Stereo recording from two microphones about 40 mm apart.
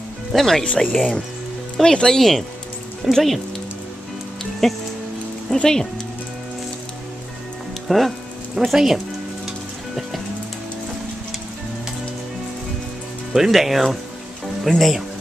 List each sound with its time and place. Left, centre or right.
0.3 s speech: centre
2.1 s speech: centre
4.6 s speech: centre
5.6 s speech: centre
7.9 s speech: centre
8.6 s speech: centre
13.3 s speech: centre